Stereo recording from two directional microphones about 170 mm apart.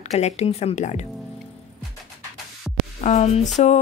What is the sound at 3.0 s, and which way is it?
Speech, 40° left (ahead or behind).